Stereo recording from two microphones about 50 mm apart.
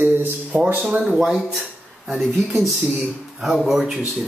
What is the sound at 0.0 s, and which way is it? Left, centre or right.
Speech, right.